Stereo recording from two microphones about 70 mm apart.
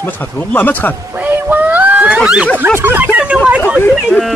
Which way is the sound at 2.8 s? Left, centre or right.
Right.